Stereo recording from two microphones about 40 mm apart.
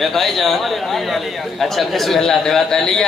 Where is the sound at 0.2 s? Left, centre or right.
Centre.